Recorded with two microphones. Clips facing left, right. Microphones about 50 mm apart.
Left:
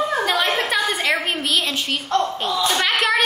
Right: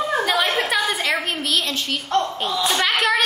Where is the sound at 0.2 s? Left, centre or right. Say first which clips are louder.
Even; centre.